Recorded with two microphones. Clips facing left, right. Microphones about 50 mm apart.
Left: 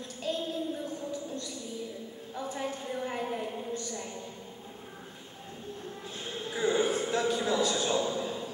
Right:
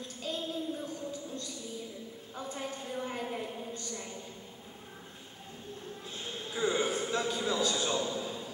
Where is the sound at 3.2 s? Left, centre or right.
Centre.